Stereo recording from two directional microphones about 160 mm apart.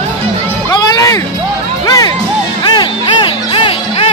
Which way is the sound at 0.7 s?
20° left (ahead or behind).